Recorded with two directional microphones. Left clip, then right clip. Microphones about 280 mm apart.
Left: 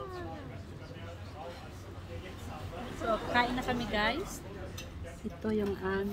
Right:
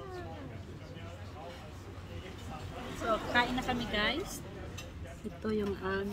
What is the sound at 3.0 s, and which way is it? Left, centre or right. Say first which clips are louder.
Speech: even; centre.